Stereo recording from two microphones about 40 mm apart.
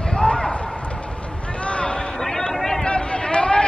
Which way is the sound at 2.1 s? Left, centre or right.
Centre.